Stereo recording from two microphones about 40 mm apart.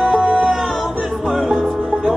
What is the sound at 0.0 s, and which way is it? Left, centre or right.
Music, right.